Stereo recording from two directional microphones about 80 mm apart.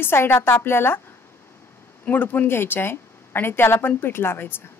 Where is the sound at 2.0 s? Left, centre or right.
Left.